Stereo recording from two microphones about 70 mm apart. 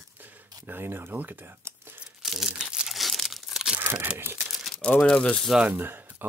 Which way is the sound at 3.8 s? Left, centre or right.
Right.